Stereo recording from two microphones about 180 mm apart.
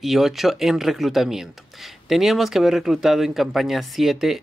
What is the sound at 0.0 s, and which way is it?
Speech, centre (ahead or behind).